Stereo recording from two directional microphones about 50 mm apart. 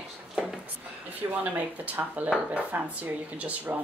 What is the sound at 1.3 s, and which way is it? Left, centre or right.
A woman's voice, right.